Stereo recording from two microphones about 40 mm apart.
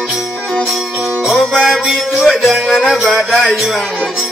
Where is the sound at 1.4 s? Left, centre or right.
Centre.